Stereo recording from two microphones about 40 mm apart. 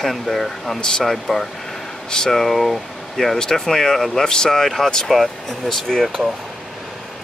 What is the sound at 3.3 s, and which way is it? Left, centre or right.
Speech, centre.